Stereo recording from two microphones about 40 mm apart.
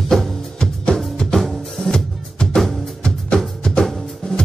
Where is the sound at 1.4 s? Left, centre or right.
Centre.